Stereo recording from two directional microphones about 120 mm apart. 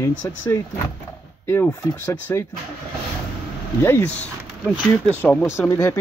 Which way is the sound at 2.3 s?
25° left (ahead or behind).